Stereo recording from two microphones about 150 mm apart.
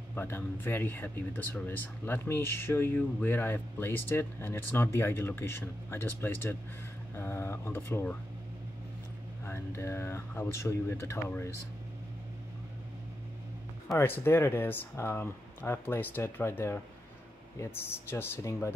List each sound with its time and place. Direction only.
0.1 s speech: 15° left (ahead or behind)
9.5 s speech: 15° left (ahead or behind)
13.8 s speech: 15° left (ahead or behind)